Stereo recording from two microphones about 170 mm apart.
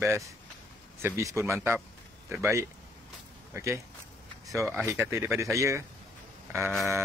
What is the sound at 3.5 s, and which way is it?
Speech, 15° right (ahead or behind).